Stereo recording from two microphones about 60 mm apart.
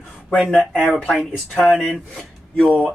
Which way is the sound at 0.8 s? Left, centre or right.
Centre.